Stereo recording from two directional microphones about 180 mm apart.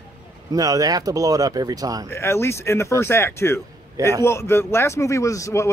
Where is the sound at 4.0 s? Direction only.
20° right (ahead or behind).